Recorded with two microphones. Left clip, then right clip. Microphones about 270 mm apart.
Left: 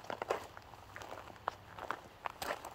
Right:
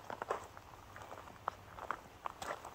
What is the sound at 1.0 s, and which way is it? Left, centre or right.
Biting, left.